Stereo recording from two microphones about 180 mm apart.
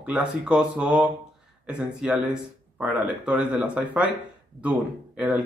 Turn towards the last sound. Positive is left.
turn(degrees=-5)  # may be behind; listen again after turning